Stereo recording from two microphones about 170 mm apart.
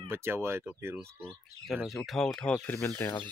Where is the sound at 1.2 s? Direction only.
Centre (ahead or behind).